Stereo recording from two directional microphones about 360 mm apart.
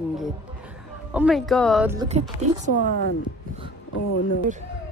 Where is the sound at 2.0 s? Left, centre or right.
Centre.